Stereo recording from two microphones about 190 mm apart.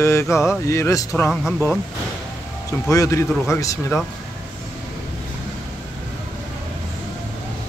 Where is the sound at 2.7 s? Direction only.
15° left (ahead or behind).